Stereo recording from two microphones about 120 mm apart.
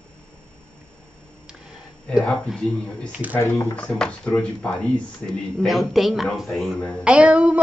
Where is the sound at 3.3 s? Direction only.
25° left (ahead or behind).